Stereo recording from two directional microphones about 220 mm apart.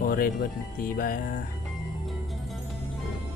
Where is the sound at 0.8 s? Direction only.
40° left (ahead or behind).